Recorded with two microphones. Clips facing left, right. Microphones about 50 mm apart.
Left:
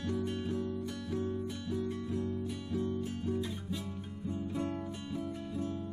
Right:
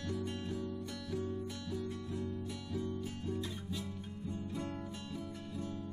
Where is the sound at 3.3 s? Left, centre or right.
Centre.